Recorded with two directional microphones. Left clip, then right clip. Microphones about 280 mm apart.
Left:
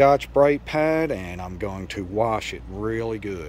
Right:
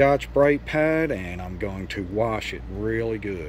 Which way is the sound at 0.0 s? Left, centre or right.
Centre.